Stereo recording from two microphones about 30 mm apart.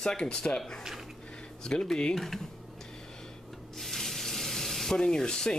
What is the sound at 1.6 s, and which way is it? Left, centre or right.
Speech, left.